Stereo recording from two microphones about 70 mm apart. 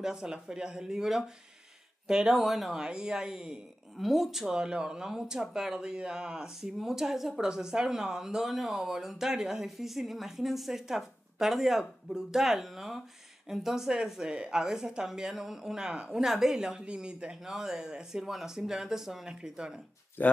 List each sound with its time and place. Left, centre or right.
0.0 s speech: centre
20.2 s speech: left